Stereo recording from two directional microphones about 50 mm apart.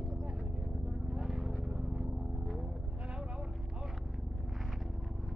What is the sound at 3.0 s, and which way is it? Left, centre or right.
Vehicle, right.